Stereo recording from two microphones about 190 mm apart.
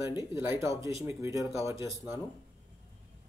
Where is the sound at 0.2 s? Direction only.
15° right (ahead or behind).